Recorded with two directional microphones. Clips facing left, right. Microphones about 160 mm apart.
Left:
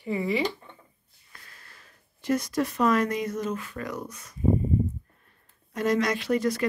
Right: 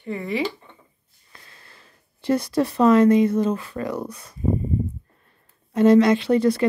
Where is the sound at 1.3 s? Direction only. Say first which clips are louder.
Right 3 dB; 25° right (ahead or behind).